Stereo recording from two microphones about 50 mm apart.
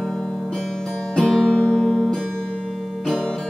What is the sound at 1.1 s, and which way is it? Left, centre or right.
Music, centre.